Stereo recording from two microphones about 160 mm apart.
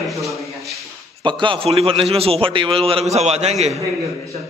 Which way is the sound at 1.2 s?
30° right (ahead or behind).